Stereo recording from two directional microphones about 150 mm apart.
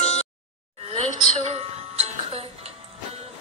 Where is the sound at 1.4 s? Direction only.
45° right (ahead or behind).